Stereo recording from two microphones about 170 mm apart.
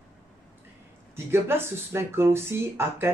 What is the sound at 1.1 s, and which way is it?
Speech, 15° right (ahead or behind).